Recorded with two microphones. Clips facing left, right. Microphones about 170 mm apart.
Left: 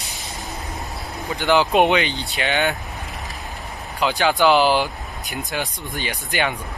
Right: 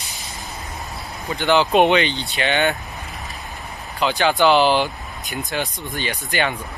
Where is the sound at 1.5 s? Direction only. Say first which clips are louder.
Right 1 dB; 10° left (ahead or behind).